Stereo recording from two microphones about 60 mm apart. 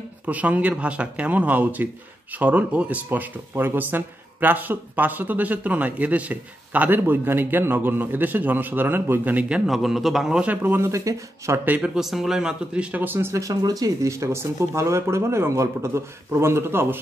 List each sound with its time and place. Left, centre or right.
0.3 s speech: right
9.7 s a man's voice: centre
10.4 s speech: right
10.8 s speech: right
12.0 s speech: centre
12.9 s speech: right
13.3 s a man's voice: right